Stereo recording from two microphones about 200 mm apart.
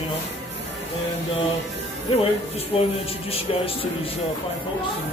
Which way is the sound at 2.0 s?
30° left (ahead or behind).